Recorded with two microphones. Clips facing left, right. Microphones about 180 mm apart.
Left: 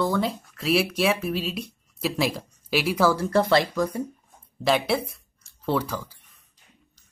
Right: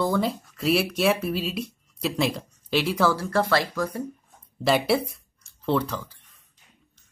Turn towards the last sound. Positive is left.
turn(degrees=10)  # may be behind; listen again after turning